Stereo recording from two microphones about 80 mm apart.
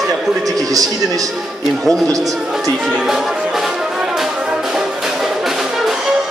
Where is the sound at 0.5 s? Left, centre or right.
Right.